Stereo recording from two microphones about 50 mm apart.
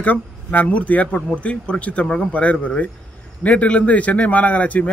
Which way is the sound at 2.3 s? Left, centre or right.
Left.